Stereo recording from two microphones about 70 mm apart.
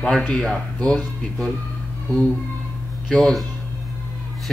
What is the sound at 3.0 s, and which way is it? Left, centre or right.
Speech, centre.